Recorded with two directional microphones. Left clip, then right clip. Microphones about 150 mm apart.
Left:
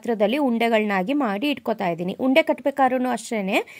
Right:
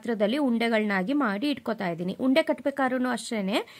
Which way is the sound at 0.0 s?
15° left (ahead or behind).